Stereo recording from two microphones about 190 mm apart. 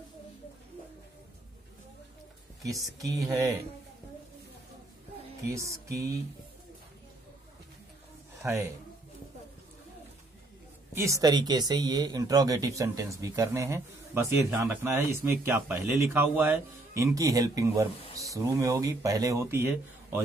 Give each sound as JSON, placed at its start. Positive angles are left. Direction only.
{"t": 2.6, "sound": "speech", "side_deg": -15}
{"t": 5.4, "sound": "speech", "side_deg": -15}
{"t": 8.4, "sound": "a man's voice", "side_deg": -15}
{"t": 11.0, "sound": "speech", "side_deg": -15}